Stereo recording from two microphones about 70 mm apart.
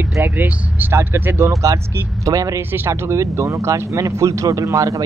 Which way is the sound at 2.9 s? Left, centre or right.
Right.